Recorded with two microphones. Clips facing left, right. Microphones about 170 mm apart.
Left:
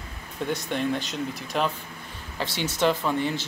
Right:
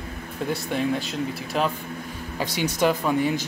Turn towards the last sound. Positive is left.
turn(degrees=-10)  # may be behind; listen again after turning